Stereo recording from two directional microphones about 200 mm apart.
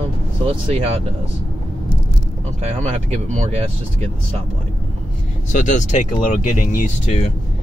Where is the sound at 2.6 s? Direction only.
30° right (ahead or behind).